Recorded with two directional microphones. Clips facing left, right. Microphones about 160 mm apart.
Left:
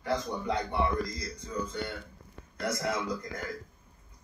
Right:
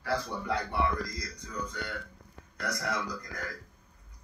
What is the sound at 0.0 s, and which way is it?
A man's voice, 20° left (ahead or behind).